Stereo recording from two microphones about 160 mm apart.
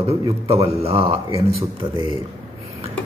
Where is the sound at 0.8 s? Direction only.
40° right (ahead or behind).